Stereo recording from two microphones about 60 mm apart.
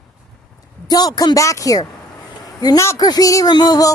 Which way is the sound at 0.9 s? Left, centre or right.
Left.